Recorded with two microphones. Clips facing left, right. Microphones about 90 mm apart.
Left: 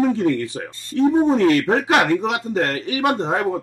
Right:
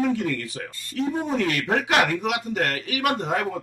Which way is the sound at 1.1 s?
30° left (ahead or behind).